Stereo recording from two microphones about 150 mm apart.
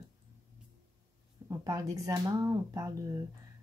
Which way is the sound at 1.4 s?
25° right (ahead or behind).